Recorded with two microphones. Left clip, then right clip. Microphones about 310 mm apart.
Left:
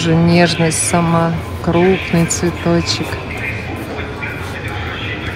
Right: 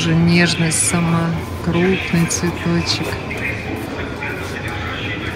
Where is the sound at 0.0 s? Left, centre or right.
Centre.